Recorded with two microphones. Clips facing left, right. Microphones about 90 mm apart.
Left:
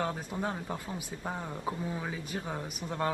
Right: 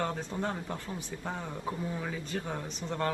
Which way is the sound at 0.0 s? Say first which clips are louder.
Even; 10° left (ahead or behind).